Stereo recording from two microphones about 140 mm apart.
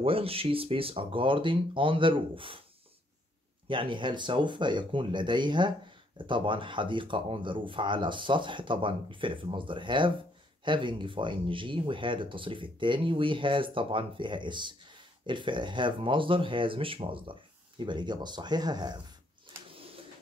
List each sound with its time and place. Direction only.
0.0 s speech: 45° right (ahead or behind)
3.6 s speech: 35° right (ahead or behind)